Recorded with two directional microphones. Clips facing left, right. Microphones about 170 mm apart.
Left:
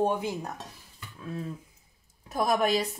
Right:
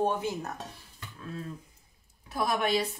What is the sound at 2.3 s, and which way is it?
Speech, 40° left (ahead or behind).